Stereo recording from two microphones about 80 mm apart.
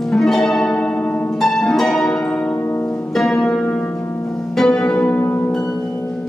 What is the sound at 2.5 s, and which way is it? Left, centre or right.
Music, left.